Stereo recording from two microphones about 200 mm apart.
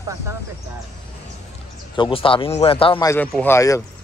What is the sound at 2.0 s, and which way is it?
A man's voice, 25° left (ahead or behind).